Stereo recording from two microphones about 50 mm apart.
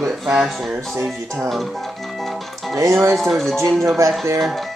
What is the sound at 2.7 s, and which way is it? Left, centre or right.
Speech, right.